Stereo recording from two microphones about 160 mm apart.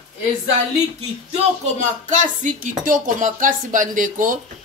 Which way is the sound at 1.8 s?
50° right (ahead or behind).